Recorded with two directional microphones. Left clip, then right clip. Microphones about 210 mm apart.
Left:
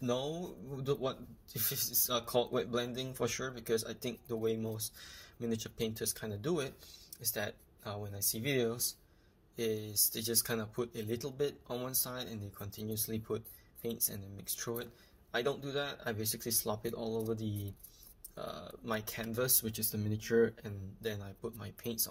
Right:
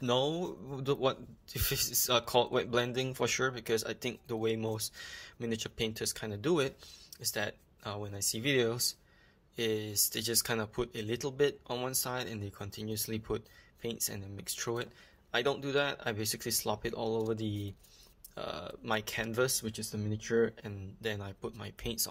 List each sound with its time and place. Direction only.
0.0 s speech: 40° right (ahead or behind)